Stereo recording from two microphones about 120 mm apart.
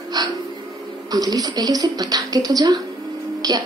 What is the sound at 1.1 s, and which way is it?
Speech, 30° right (ahead or behind).